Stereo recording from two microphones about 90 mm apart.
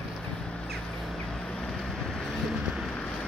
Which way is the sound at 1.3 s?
5° left (ahead or behind).